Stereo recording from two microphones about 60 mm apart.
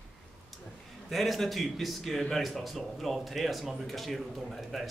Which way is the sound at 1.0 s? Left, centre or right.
Centre.